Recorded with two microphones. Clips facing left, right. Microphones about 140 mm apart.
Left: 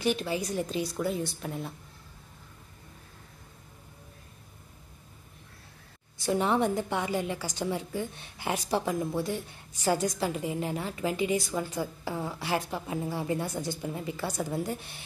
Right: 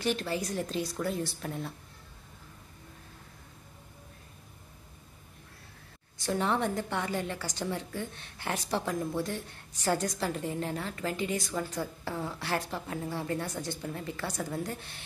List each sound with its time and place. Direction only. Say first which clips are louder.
0.0 s a woman's voice: left 2 dB; 5° left (ahead or behind)
6.1 s a woman's voice: left 3 dB; 10° left (ahead or behind)